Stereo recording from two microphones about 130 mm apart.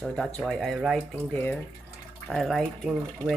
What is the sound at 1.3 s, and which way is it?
Speech, 10° left (ahead or behind).